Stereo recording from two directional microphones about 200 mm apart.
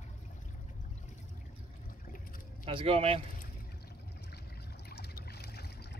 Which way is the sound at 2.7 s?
30° right (ahead or behind).